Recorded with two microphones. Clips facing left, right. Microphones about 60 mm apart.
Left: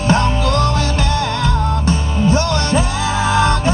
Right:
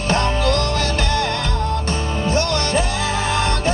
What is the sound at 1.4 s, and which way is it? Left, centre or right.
Music, right.